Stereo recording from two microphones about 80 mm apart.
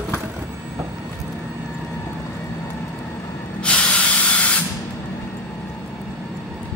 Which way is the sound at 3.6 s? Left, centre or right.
Centre.